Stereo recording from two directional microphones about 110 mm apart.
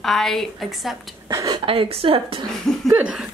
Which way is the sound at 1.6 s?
60° right (ahead or behind).